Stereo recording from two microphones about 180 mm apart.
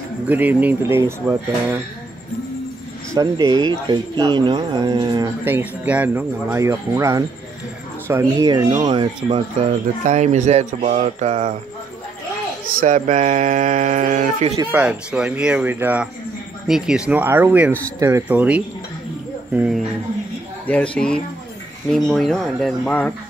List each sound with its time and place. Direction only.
0.3 s speech: 10° right (ahead or behind)
3.2 s speech: 20° right (ahead or behind)
5.4 s speech: 10° right (ahead or behind); by 9.4 s 25° right (ahead or behind)
10.0 s speech: 40° right (ahead or behind)
12.8 s speech: 45° right (ahead or behind)
14.7 s speech: 5° right (ahead or behind)
20.6 s speech: 5° left (ahead or behind)